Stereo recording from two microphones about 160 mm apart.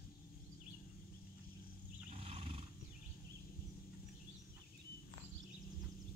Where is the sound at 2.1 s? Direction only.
40° right (ahead or behind).